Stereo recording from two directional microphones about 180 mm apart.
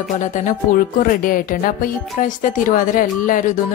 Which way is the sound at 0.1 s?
45° left (ahead or behind).